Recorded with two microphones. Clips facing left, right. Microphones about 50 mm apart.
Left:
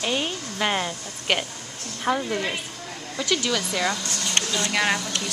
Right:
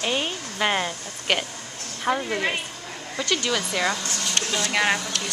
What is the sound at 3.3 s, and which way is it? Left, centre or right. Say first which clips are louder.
Speech: even; centre.